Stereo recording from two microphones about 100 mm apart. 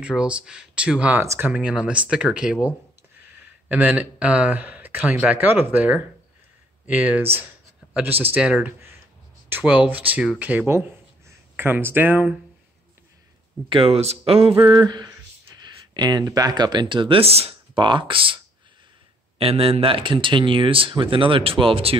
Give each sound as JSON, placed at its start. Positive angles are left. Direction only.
{"t": 0.0, "sound": "speech", "side_deg": -10}
{"t": 1.2, "sound": "speech", "side_deg": -30}
{"t": 1.5, "sound": "speech", "side_deg": -10}
{"t": 8.4, "sound": "speech", "side_deg": -10}
{"t": 10.7, "sound": "speech", "side_deg": -25}
{"t": 13.7, "sound": "speech", "side_deg": -70}
{"t": 14.6, "sound": "speech", "side_deg": -45}
{"t": 19.3, "sound": "speech", "side_deg": -75}